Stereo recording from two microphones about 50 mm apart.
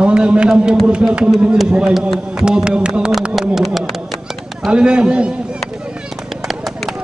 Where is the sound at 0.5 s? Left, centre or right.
Centre.